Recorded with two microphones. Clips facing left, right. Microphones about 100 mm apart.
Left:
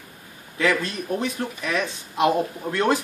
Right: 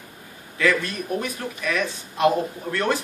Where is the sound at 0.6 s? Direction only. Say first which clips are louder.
Right 1 dB; 20° left (ahead or behind).